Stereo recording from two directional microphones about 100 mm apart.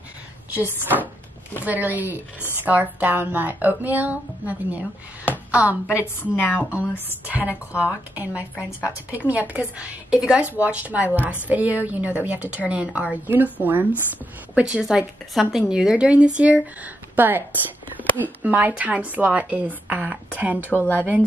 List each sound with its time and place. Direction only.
0.6 s a woman's voice: 15° right (ahead or behind)
6.3 s a woman's voice: 20° left (ahead or behind)
7.2 s a woman's voice: 15° right (ahead or behind)
20.7 s a woman's voice: 20° left (ahead or behind)